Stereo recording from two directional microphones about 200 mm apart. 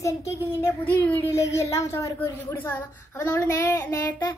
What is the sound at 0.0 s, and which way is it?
A child's voice, 15° left (ahead or behind).